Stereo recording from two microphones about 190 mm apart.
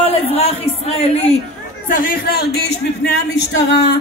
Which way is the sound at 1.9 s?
45° left (ahead or behind).